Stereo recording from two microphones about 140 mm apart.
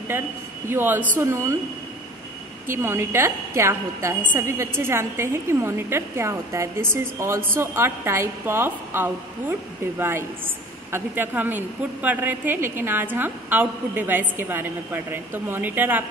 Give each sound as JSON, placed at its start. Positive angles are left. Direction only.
{"t": 0.1, "sound": "a woman's voice", "side_deg": -15}
{"t": 2.7, "sound": "a woman's voice", "side_deg": -15}